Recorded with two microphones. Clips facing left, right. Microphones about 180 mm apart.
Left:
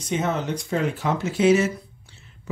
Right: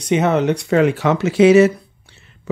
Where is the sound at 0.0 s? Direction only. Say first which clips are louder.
Right 9 dB; 70° right (ahead or behind).